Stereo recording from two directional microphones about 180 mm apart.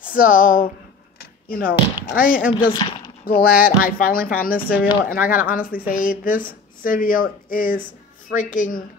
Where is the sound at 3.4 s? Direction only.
55° left (ahead or behind).